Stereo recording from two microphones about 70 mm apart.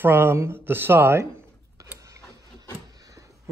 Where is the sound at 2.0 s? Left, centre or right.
Right.